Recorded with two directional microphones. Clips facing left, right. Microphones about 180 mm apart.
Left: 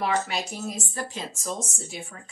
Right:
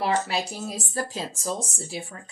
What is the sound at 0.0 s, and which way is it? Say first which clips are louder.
Speech: right 2 dB; 30° right (ahead or behind).